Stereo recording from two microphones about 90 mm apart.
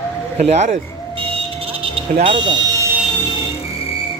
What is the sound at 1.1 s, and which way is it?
Smoke detector, 80° right.